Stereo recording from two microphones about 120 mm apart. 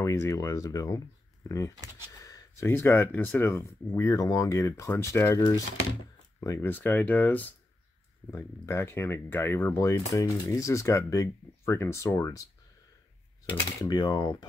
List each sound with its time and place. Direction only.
0.0 s speech: 25° left (ahead or behind)
6.4 s speech: 25° left (ahead or behind)
13.7 s speech: 30° left (ahead or behind)